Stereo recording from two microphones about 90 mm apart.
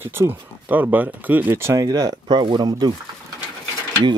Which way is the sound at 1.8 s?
45° right (ahead or behind).